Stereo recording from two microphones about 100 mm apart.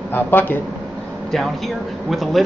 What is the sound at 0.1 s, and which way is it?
Speech, 20° left (ahead or behind).